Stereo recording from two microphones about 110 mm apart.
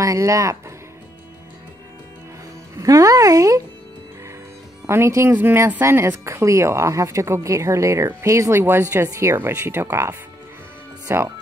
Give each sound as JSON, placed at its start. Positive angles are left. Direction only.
{"t": 0.0, "sound": "speech", "side_deg": -30}
{"t": 2.8, "sound": "speech", "side_deg": -30}
{"t": 4.8, "sound": "speech", "side_deg": -25}